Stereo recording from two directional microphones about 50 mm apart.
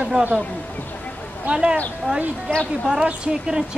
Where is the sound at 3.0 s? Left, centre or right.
Centre.